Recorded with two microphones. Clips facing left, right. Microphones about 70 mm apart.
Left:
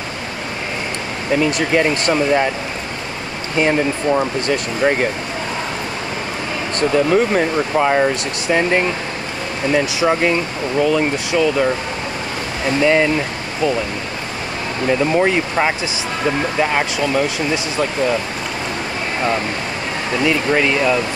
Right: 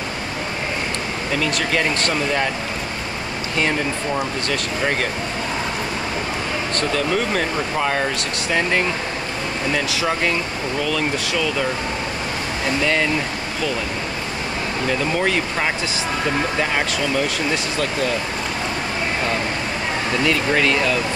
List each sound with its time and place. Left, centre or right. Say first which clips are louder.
1.4 s speech: left 5 dB; centre
3.5 s speech: left 6 dB; left
6.8 s speech: left 8 dB; centre
12.8 s speech: left 7 dB; centre
14.9 s speech: left 6 dB; centre
20.2 s speech: left 3 dB; centre